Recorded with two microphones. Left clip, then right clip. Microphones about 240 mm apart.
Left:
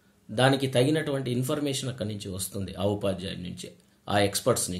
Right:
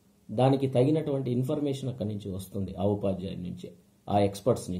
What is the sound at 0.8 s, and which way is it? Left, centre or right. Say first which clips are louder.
Speech: left 1 dB; left.